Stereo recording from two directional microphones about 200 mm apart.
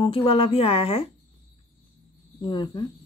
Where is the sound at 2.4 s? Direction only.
20° left (ahead or behind).